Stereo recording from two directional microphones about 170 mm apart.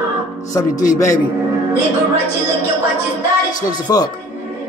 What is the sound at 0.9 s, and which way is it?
Speech, 20° left (ahead or behind).